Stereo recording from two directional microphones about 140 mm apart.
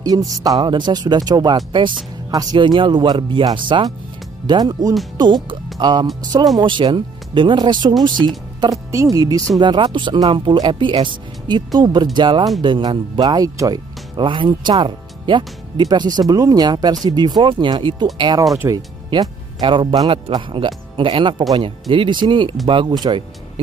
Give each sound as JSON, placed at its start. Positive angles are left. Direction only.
{"t": 0.1, "sound": "speech", "side_deg": -35}